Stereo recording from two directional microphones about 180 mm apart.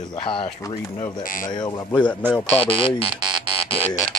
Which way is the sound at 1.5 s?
25° left (ahead or behind).